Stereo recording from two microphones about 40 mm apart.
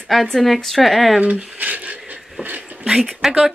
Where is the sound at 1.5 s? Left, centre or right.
Right.